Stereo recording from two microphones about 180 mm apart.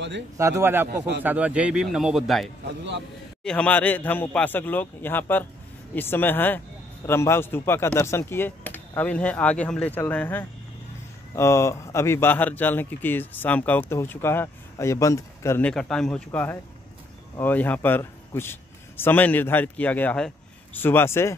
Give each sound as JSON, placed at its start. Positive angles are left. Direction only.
{"t": 0.4, "sound": "speech", "side_deg": -15}
{"t": 0.8, "sound": "a man's voice", "side_deg": -75}
{"t": 1.2, "sound": "a man's voice", "side_deg": -10}